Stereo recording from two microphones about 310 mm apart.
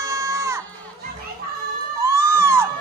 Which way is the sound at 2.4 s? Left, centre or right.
Centre.